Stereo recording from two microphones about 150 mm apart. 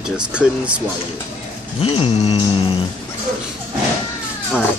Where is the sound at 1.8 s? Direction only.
40° left (ahead or behind).